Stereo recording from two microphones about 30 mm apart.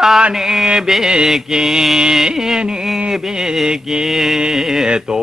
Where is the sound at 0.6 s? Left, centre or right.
Right.